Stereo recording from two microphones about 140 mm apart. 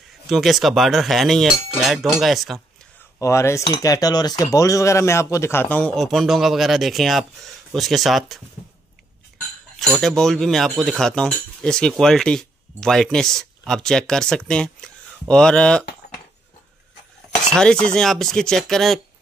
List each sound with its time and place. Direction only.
0.3 s speech: centre (ahead or behind)
3.2 s speech: 20° left (ahead or behind); by 8.4 s centre (ahead or behind)
9.8 s speech: centre (ahead or behind)
17.5 s speech: 5° left (ahead or behind)